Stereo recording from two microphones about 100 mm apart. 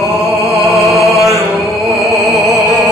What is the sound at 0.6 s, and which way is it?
Music, centre (ahead or behind).